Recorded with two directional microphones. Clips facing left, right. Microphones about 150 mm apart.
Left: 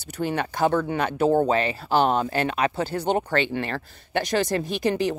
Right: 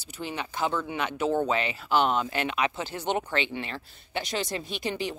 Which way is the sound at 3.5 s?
50° left (ahead or behind).